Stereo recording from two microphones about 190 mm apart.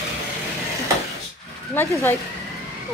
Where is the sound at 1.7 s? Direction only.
10° left (ahead or behind).